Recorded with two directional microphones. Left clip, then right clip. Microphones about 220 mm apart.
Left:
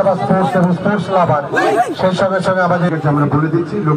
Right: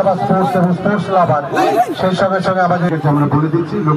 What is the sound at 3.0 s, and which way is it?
Speech, 45° right (ahead or behind).